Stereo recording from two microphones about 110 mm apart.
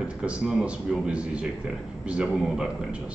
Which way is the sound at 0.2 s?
10° right (ahead or behind).